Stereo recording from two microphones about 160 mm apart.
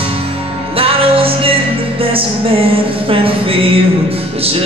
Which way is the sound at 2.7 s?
35° right (ahead or behind).